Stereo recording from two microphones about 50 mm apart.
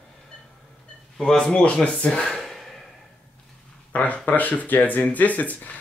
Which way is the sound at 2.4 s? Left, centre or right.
Centre.